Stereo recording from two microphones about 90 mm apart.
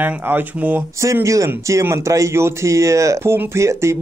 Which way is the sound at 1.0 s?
35° right (ahead or behind).